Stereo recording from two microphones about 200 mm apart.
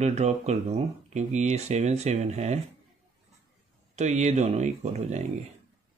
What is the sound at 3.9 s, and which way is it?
Speech, 35° right (ahead or behind).